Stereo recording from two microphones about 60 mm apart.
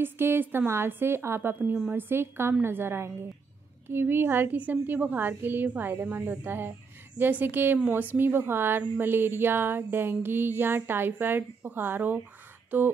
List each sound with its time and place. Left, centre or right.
0.0 s a woman's voice: right